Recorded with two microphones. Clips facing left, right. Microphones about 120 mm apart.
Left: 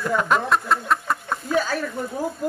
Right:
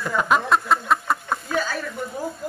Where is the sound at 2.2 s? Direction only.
45° left (ahead or behind).